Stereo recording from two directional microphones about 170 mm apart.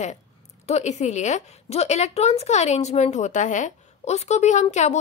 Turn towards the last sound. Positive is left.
turn(degrees=45)  # may be behind; listen again after turning